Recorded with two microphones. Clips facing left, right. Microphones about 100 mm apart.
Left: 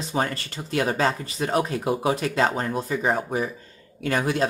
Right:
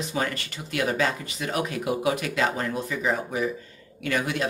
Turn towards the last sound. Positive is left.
turn(degrees=35)  # may be behind; listen again after turning